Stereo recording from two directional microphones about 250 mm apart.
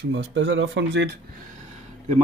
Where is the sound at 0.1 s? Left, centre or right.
Right.